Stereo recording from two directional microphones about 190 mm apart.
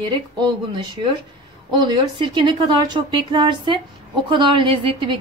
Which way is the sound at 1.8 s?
25° right (ahead or behind).